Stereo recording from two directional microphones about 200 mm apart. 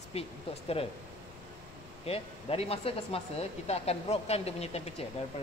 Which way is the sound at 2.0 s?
30° left (ahead or behind).